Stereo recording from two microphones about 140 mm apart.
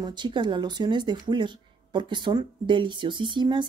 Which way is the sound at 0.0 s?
30° right (ahead or behind).